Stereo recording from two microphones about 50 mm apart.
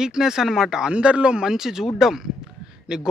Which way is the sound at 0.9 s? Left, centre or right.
Right.